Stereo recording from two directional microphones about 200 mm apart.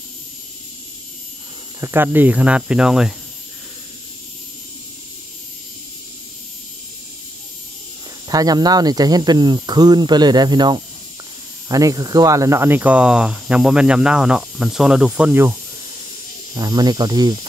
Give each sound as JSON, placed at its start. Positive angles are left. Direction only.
{"t": 1.8, "sound": "cricket", "side_deg": -10}
{"t": 8.3, "sound": "speech", "side_deg": -20}
{"t": 16.5, "sound": "speech", "side_deg": -20}